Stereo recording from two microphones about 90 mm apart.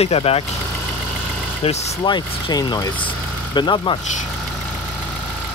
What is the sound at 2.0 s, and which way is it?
Speech, 55° left (ahead or behind).